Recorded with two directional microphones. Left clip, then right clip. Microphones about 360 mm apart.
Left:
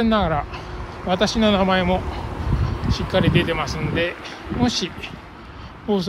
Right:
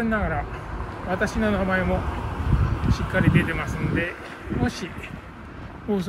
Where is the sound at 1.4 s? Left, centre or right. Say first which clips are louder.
Left 6 dB; left.